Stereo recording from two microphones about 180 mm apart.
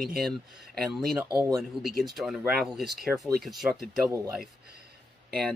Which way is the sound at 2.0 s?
Centre (ahead or behind).